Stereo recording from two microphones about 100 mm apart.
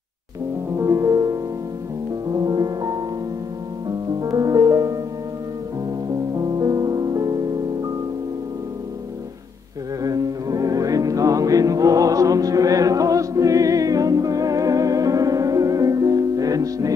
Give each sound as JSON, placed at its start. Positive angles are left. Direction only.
{"t": 0.7, "sound": "music", "side_deg": -30}
{"t": 4.2, "sound": "music", "side_deg": -40}
{"t": 6.0, "sound": "music", "side_deg": -40}
{"t": 10.0, "sound": "music", "side_deg": -40}